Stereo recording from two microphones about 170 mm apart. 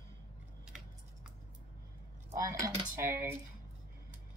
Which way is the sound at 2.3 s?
15° right (ahead or behind).